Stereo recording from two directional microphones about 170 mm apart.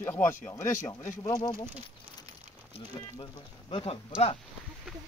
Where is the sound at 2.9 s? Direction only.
30° left (ahead or behind).